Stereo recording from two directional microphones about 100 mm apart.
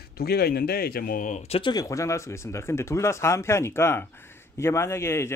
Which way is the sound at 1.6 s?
50° left (ahead or behind).